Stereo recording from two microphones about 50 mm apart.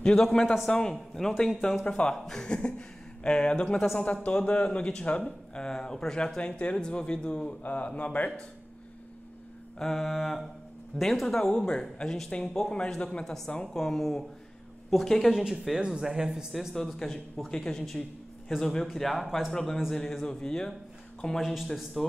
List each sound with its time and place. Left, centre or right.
0.0 s speech: centre
1.9 s speech: centre
7.6 s speech: left
9.8 s mantra: centre
11.0 s speech: centre
11.3 s speech: centre
13.7 s mantra: centre
14.9 s speech: centre
16.7 s speech: centre
18.9 s mantra: centre
19.5 s speech: centre
21.4 s mantra: centre